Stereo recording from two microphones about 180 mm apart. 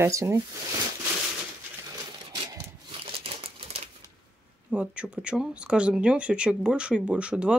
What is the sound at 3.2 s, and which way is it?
Crumpling, 30° right (ahead or behind).